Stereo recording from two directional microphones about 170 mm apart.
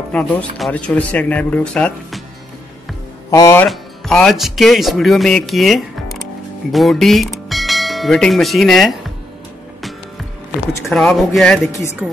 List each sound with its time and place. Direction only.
0.1 s speech: 5° left (ahead or behind)
3.3 s speech: 20° left (ahead or behind)
3.6 s speech: 5° left (ahead or behind)
10.9 s speech: centre (ahead or behind)